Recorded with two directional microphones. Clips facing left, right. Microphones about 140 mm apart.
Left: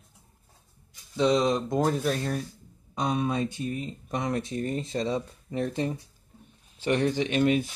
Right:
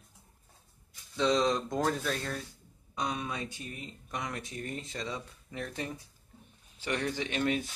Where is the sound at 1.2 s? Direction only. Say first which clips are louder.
Left 4 dB; 15° left (ahead or behind).